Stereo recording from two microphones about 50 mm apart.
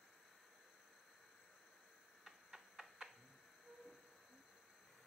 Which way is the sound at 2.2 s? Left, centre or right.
Centre.